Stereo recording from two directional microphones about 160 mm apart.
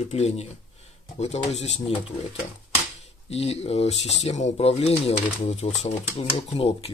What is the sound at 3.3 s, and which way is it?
Speech, 40° left (ahead or behind).